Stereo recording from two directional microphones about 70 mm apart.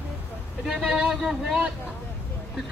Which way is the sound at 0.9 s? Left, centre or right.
Centre.